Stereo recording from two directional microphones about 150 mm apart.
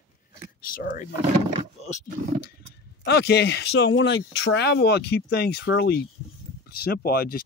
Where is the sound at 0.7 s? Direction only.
70° left (ahead or behind).